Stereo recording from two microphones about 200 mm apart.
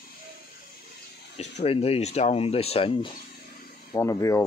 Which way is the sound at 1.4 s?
30° left (ahead or behind).